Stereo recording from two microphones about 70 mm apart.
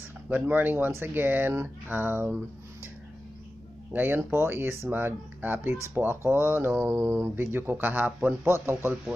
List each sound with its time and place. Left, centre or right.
0.3 s speech: right
3.9 s speech: right